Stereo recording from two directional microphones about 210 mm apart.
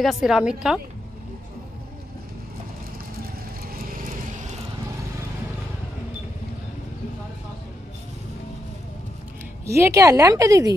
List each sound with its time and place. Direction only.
0.0 s a woman's voice: centre (ahead or behind)
3.7 s vehicle: 40° right (ahead or behind)
9.7 s a woman's voice: 15° right (ahead or behind)